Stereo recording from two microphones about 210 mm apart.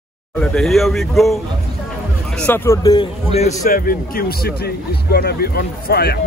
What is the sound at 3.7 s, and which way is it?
Speech, 45° left (ahead or behind).